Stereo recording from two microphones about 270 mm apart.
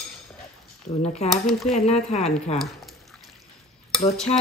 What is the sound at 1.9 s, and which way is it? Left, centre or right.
Speech, left.